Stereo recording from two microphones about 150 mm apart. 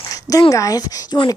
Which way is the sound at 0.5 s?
25° left (ahead or behind).